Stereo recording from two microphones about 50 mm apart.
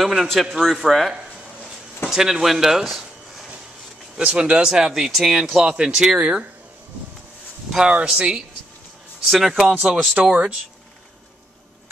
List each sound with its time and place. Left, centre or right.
0.0 s a man's voice: centre
2.0 s speech: centre
4.2 s speech: right
7.8 s speech: centre
9.8 s speech: centre